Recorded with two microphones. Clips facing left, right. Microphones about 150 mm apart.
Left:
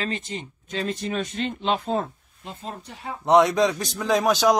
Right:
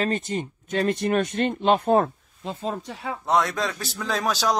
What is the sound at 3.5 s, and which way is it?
Speech, 15° left (ahead or behind).